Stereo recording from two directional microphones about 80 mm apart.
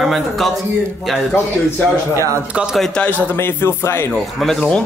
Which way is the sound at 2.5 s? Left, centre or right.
Centre.